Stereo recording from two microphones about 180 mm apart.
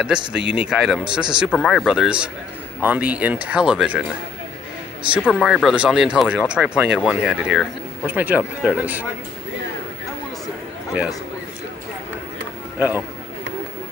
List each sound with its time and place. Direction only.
0.0 s speech: 5° right (ahead or behind)
5.2 s speech: centre (ahead or behind)
12.7 s a man's voice: 10° right (ahead or behind)